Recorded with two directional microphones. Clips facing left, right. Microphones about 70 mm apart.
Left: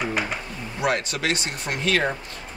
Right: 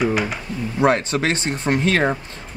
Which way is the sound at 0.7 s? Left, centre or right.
Right.